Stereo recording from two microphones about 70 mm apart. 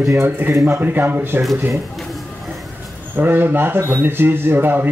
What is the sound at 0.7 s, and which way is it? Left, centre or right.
Speech, right.